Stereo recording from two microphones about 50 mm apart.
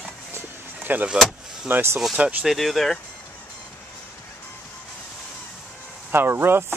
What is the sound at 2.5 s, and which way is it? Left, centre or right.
Speech, centre.